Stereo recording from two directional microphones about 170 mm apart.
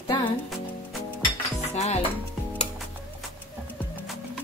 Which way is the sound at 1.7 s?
40° left (ahead or behind).